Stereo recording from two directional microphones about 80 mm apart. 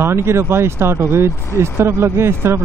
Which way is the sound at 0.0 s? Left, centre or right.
Right.